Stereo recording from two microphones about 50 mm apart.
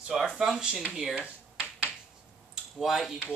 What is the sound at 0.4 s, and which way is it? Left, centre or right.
Speech, centre.